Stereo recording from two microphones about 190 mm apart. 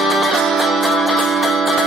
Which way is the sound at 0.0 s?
Centre (ahead or behind).